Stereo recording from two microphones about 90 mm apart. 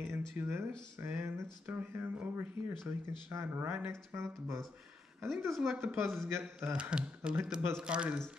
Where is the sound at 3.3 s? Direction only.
30° right (ahead or behind).